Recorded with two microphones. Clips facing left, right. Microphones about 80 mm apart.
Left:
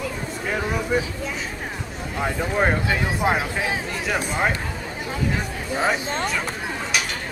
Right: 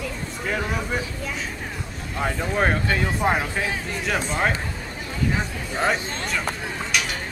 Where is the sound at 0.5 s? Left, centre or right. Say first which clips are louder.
Left 2 dB; centre.